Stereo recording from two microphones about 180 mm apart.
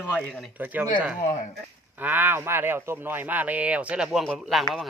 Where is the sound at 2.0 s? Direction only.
10° right (ahead or behind).